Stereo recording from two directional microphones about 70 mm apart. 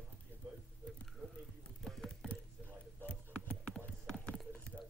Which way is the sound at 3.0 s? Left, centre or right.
Centre.